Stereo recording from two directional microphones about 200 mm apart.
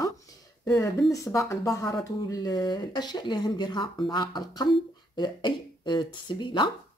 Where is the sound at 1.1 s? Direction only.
15° left (ahead or behind).